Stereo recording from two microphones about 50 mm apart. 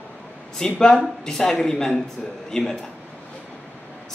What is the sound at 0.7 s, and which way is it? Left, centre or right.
Speech, centre.